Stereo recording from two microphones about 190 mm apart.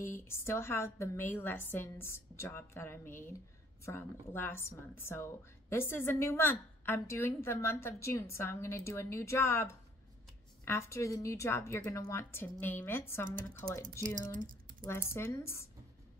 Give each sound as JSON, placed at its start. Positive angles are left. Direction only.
{"t": 0.0, "sound": "a woman's voice", "side_deg": 15}
{"t": 14.0, "sound": "speech", "side_deg": -40}
{"t": 14.8, "sound": "a woman's voice", "side_deg": 15}